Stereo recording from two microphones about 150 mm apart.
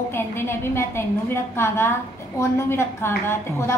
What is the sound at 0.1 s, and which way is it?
A woman's voice, 15° left (ahead or behind).